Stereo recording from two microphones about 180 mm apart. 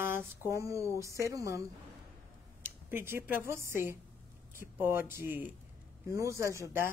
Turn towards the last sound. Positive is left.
turn(degrees=-15)  # may be behind; listen again after turning